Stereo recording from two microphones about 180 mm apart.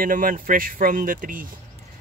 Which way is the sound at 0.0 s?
50° right (ahead or behind).